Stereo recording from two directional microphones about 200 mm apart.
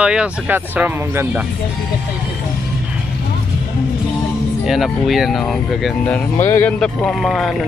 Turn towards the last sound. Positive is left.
turn(degrees=0)  # may be behind; listen again after turning